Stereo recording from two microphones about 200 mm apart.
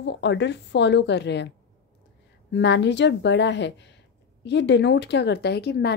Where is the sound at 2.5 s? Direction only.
60° left (ahead or behind).